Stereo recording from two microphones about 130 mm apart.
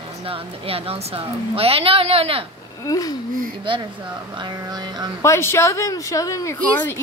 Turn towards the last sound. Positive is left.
turn(degrees=25)  # may be behind; listen again after turning